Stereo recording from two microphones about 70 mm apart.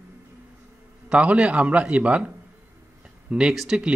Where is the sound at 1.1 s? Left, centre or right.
Centre.